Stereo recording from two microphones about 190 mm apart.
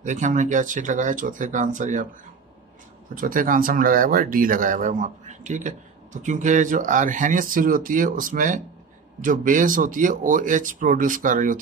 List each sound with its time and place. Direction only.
0.0 s speech: 40° right (ahead or behind)
3.2 s speech: 45° right (ahead or behind)